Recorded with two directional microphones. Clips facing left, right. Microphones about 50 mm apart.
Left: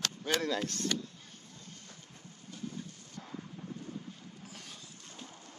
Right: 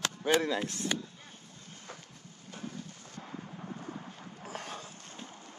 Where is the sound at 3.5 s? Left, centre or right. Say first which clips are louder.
Right 2 dB; right.